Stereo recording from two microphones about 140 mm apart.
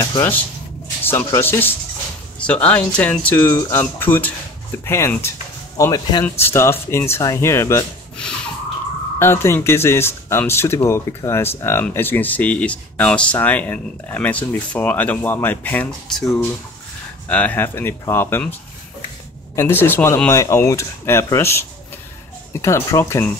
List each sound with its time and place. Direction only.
0.0 s speech: 20° left (ahead or behind)
9.2 s speech: 20° left (ahead or behind)
19.5 s speech: 20° left (ahead or behind)